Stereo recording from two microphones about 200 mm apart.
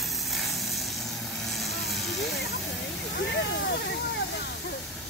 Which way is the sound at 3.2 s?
55° left (ahead or behind).